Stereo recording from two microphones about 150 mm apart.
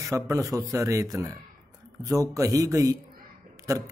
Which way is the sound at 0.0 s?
20° right (ahead or behind).